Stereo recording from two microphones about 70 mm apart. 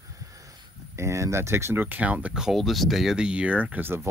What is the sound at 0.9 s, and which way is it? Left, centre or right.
Speech, right.